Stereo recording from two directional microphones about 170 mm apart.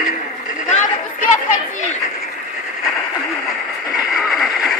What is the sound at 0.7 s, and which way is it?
Speech, 45° left (ahead or behind).